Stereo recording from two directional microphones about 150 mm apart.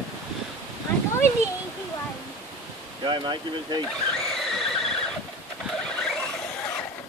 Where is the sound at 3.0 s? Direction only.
30° right (ahead or behind).